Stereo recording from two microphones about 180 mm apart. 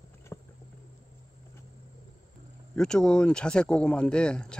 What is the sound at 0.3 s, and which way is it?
Cricket, 15° left (ahead or behind).